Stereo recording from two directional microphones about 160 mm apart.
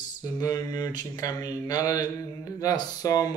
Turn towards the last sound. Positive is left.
turn(degrees=20)  # may be behind; listen again after turning